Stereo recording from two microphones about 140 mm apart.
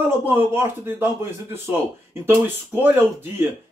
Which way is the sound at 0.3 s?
15° right (ahead or behind).